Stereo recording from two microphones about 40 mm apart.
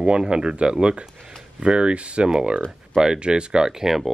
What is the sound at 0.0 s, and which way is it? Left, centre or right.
Speech, right.